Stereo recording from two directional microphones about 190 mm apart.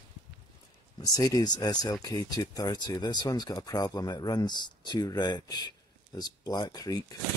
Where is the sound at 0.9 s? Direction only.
20° left (ahead or behind).